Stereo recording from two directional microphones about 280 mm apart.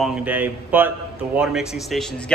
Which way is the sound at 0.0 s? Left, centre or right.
Centre.